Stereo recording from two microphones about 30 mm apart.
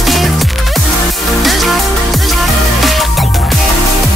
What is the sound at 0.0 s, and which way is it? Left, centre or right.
Music, centre.